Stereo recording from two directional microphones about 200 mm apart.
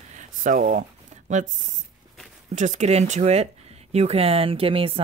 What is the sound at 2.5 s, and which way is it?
Speech, 35° right (ahead or behind).